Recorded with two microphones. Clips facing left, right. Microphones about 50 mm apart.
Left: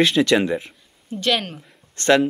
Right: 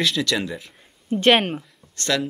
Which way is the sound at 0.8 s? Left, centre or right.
Right.